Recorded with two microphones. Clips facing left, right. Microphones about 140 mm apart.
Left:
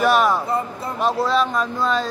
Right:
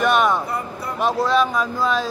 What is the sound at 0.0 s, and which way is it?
Speech, 5° left (ahead or behind).